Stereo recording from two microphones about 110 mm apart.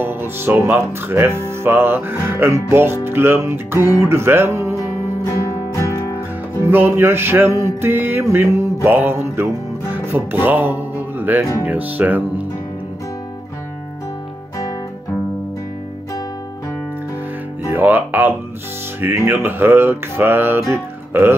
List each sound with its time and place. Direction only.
0.0 s speech: 20° right (ahead or behind)
4.7 s music: 30° left (ahead or behind)
6.6 s speech: 20° right (ahead or behind)
8.8 s music: 20° right (ahead or behind)
11.6 s speech: 15° right (ahead or behind)
17.6 s music: 15° right (ahead or behind)
18.9 s speech: 20° right (ahead or behind)
20.7 s music: 20° right (ahead or behind)